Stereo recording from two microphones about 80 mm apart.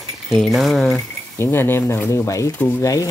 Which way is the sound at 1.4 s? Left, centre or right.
Left.